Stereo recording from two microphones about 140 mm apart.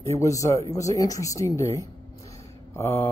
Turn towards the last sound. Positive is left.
turn(degrees=20)  # may be behind; listen again after turning